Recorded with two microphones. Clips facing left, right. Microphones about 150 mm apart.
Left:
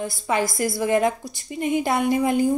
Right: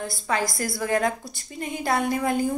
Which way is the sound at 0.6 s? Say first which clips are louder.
Left 4 dB; 20° left (ahead or behind).